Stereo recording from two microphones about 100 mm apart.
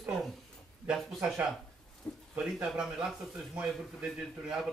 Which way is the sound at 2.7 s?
5° right (ahead or behind).